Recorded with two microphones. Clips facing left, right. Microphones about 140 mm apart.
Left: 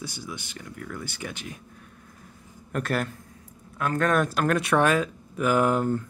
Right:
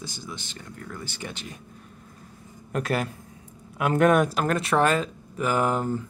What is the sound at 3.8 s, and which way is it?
Speech, 15° right (ahead or behind).